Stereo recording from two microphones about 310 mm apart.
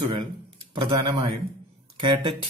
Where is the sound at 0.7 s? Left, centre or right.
Centre.